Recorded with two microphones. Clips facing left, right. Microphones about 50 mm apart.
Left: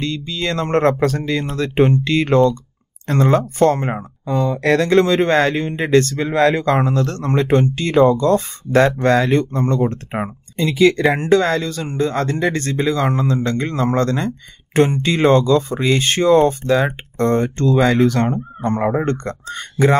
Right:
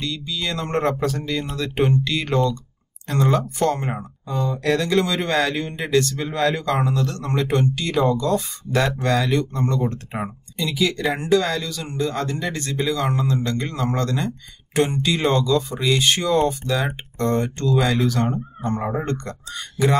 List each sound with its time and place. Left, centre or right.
0.0 s speech: left